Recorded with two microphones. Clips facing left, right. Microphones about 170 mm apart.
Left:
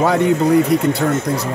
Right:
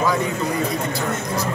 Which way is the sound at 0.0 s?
65° left (ahead or behind).